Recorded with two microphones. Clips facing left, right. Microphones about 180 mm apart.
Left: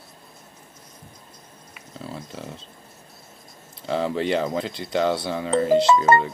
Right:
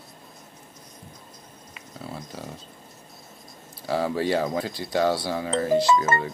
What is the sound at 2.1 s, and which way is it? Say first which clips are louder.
Speech: left 1 dB; 25° left (ahead or behind).